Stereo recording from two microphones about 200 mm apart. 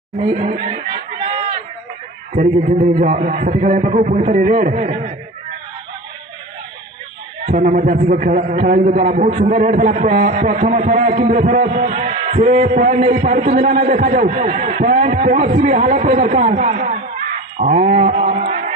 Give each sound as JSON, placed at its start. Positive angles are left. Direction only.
{"t": 0.3, "sound": "chatter", "side_deg": -35}
{"t": 2.3, "sound": "a man's voice", "side_deg": -40}
{"t": 7.4, "sound": "a man's voice", "side_deg": -40}